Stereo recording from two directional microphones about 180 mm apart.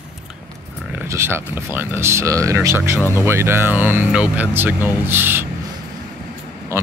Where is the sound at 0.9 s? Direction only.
15° right (ahead or behind).